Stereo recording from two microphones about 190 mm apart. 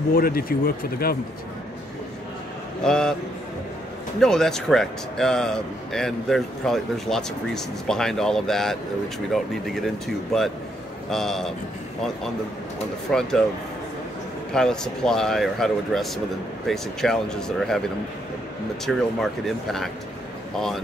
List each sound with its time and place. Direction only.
0.1 s speech: 50° left (ahead or behind)
2.8 s speech: 5° left (ahead or behind)
4.2 s speech: 5° left (ahead or behind)
13.1 s speech: centre (ahead or behind)
14.5 s speech: 5° left (ahead or behind)
18.9 s speech: centre (ahead or behind)